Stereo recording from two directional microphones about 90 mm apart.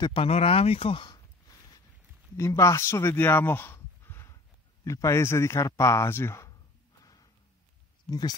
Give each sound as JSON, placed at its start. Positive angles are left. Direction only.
{"t": 0.1, "sound": "speech", "side_deg": 90}
{"t": 2.3, "sound": "speech", "side_deg": 30}
{"t": 8.1, "sound": "speech", "side_deg": 50}